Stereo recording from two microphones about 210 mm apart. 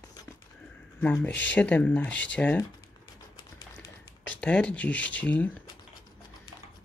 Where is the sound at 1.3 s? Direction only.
60° left (ahead or behind).